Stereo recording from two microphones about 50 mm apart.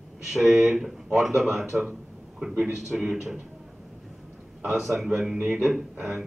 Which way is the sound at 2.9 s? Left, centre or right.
Centre.